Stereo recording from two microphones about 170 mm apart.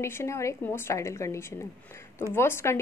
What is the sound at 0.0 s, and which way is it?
A woman's voice, 15° left (ahead or behind).